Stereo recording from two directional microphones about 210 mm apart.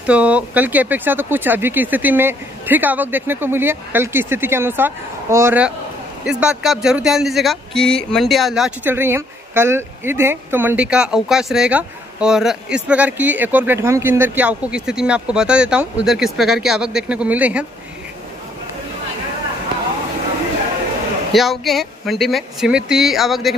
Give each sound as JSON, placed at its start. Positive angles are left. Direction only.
{"t": 0.0, "sound": "speech", "side_deg": -5}
{"t": 21.3, "sound": "speech", "side_deg": 0}